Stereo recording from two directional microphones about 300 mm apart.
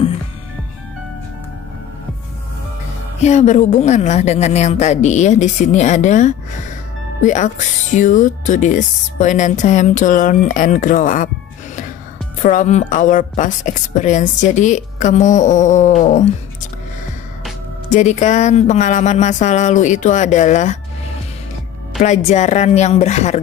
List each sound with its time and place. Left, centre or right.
3.2 s speech: left
12.4 s speech: left
17.8 s speech: left
22.0 s speech: left